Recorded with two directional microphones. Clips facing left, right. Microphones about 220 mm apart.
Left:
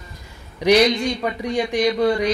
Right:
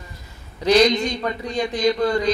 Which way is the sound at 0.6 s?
15° left (ahead or behind).